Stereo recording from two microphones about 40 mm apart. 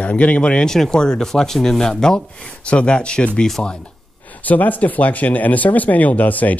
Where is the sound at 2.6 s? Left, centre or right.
Left.